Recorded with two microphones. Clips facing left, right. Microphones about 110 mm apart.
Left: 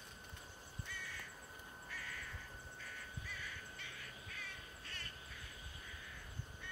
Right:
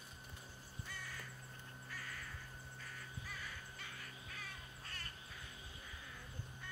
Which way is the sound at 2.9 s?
40° right (ahead or behind).